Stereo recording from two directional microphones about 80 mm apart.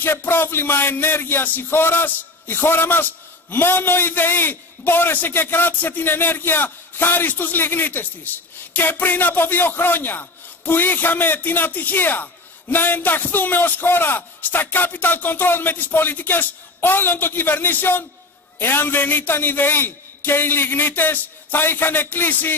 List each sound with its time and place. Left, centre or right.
0.0 s speech: left